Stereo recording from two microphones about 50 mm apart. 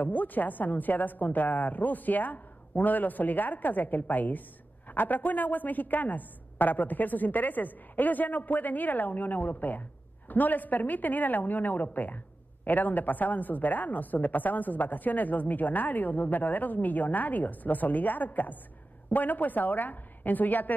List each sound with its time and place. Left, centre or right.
0.0 s a woman's voice: left